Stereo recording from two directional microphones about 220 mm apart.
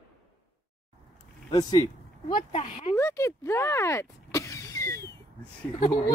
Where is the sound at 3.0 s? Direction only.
15° left (ahead or behind).